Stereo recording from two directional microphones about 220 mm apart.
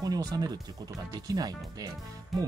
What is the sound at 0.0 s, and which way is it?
Speech, 15° right (ahead or behind).